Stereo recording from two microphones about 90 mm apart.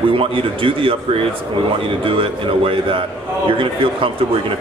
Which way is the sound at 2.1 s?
85° right.